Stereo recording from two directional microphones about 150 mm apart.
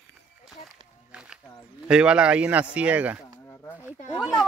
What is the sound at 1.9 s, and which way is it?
Speech, 5° right (ahead or behind).